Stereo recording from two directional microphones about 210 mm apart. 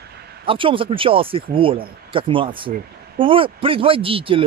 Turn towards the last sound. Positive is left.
turn(degrees=-25)  # may be behind; listen again after turning